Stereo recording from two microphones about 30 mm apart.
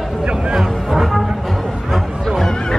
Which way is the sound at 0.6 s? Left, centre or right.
Centre.